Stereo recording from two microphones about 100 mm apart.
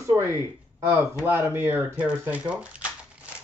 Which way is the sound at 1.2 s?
25° right (ahead or behind).